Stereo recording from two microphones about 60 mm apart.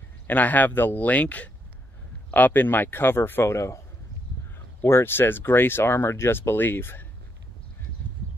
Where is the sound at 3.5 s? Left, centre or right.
Left.